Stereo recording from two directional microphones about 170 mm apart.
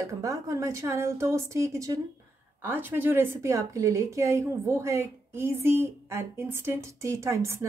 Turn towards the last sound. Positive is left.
turn(degrees=-15)  # may be behind; listen again after turning